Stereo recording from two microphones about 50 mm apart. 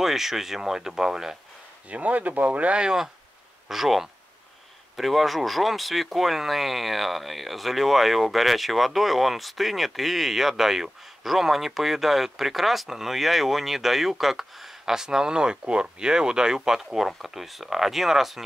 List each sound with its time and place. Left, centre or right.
0.0 s speech: centre
1.9 s speech: right; by 18.4 s centre